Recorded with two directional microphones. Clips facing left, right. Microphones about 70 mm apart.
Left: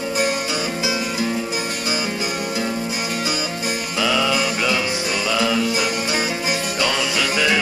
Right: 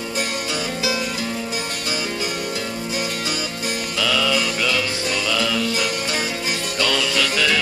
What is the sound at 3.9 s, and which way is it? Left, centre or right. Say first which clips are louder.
Music: left 1 dB; centre.